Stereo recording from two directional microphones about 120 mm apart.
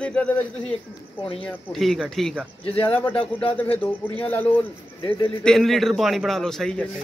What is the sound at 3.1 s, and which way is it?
Speech, 50° left (ahead or behind).